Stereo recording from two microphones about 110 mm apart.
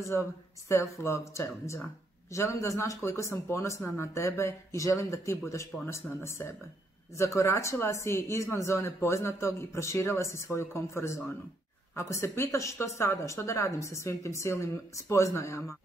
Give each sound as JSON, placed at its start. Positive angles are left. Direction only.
{"t": 0.7, "sound": "speech", "side_deg": 25}